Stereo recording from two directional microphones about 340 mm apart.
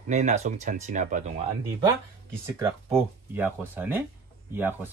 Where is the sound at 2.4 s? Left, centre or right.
Centre.